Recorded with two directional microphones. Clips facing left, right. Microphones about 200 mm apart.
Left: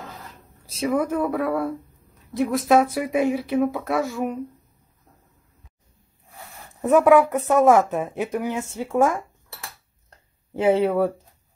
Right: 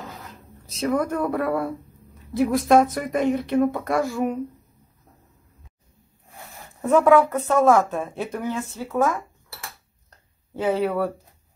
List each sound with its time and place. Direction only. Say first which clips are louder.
0.7 s speech: left 1 dB; 5° left (ahead or behind)
6.8 s speech: left 1 dB; 15° left (ahead or behind)
10.6 s speech: left 4 dB; 25° left (ahead or behind)